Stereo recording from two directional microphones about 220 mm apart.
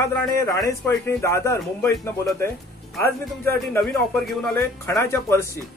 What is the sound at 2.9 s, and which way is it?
Speech, 5° left (ahead or behind).